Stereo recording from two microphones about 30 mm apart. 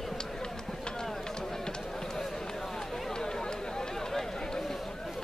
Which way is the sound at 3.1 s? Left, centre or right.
Centre.